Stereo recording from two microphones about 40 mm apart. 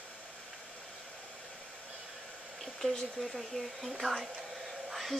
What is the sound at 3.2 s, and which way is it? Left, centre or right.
Speech, centre.